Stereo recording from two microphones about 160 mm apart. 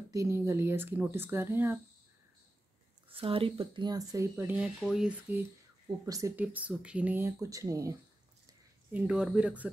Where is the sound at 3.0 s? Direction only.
35° right (ahead or behind); by 5.5 s 10° right (ahead or behind).